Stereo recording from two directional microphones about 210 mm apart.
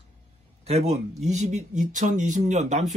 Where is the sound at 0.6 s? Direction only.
30° right (ahead or behind).